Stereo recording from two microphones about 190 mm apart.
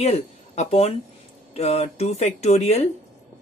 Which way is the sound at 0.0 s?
35° left (ahead or behind).